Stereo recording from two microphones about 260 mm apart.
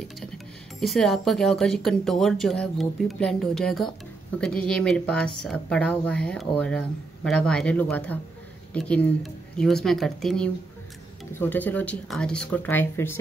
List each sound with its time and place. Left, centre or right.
0.7 s speech: centre